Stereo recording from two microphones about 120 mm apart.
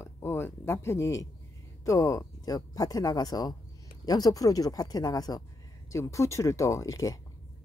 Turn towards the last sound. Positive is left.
turn(degrees=30)  # may be behind; listen again after turning